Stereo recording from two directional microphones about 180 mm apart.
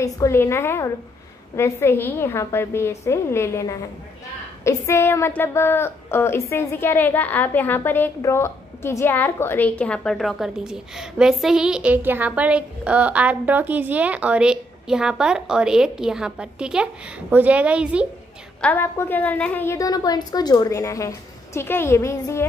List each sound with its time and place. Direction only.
0.0 s a woman's voice: 15° left (ahead or behind); by 18.0 s 5° right (ahead or behind)
18.6 s a woman's voice: 10° left (ahead or behind)